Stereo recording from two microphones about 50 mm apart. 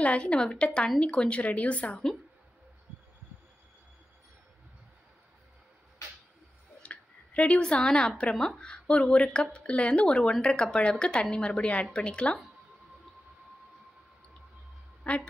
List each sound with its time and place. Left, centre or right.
0.0 s a woman's voice: left
6.8 s a sound: left
7.6 s a woman's voice: centre
15.0 s a woman's voice: left